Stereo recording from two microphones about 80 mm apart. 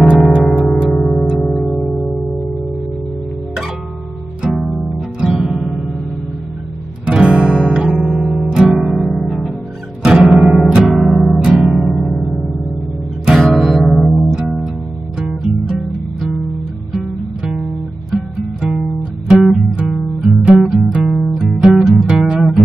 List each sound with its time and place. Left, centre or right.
0.2 s music: centre
4.4 s music: centre
7.1 s guitar: centre
7.9 s music: centre
8.5 s guitar: centre
8.7 s music: centre
18.1 s music: centre